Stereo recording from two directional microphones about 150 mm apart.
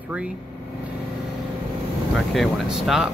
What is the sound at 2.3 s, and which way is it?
Speech, centre (ahead or behind).